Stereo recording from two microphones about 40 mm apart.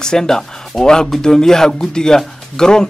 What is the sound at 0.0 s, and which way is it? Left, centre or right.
Speech, centre.